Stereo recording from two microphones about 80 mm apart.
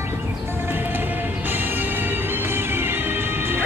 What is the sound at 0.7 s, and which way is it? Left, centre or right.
Music, right.